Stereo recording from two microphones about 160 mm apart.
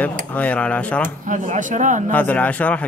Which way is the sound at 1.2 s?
50° right (ahead or behind).